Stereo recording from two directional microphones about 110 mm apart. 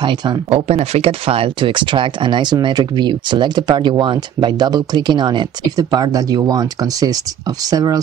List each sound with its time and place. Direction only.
0.0 s speech: 45° right (ahead or behind)
0.5 s speech: 70° right (ahead or behind); by 8.0 s 35° right (ahead or behind)